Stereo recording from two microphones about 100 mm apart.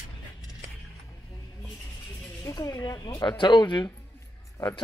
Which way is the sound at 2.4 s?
35° left (ahead or behind).